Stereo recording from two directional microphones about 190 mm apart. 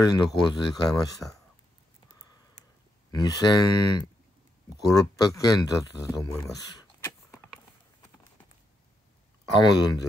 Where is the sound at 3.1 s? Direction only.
20° left (ahead or behind).